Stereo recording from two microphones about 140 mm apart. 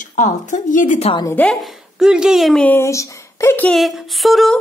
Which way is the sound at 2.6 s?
15° left (ahead or behind).